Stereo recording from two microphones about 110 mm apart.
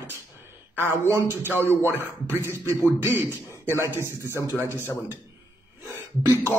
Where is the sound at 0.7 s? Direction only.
25° right (ahead or behind).